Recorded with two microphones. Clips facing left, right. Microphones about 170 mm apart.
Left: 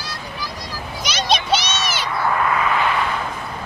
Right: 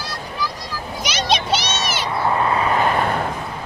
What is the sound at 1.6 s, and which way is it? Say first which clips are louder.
Cat: right 1 dB; 25° right (ahead or behind).